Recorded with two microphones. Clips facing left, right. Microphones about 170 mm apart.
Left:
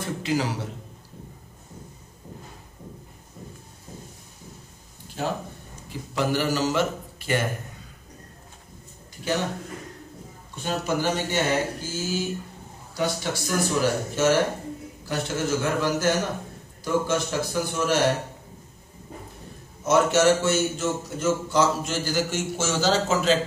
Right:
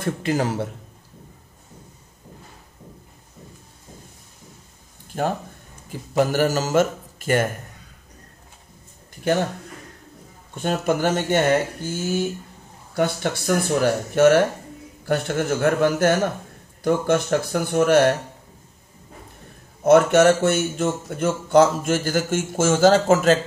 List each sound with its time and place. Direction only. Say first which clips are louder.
0.0 s a man's voice: right 3 dB; 50° right (ahead or behind)
5.1 s a man's voice: right 4 dB; 50° right (ahead or behind)
9.3 s speech: right 6 dB; 55° right (ahead or behind)
10.5 s a man's voice: right 5 dB; 50° right (ahead or behind)
19.8 s a man's voice: right 6 dB; 55° right (ahead or behind)